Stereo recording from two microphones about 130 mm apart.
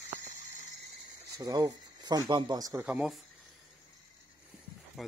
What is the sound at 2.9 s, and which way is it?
Speech, 10° right (ahead or behind).